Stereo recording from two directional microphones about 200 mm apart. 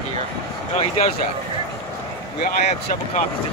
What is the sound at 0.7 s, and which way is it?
Speech, 30° left (ahead or behind).